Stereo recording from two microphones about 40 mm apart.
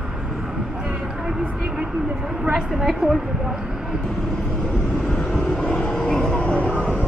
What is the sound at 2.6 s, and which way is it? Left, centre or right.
Speech, centre.